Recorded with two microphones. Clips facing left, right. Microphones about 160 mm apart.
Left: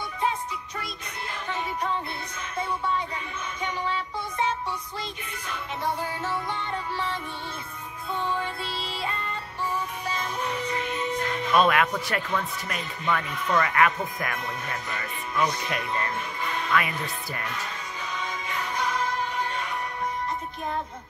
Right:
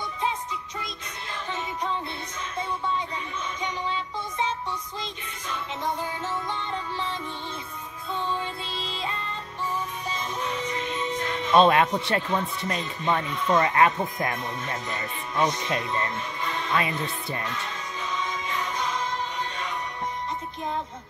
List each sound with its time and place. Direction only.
3.6 s a sound: 15° right (ahead or behind)
8.7 s music: 10° left (ahead or behind)
11.1 s music: 10° left (ahead or behind)
11.5 s speech: 25° right (ahead or behind)